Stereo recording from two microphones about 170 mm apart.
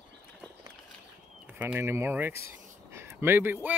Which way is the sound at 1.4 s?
10° right (ahead or behind).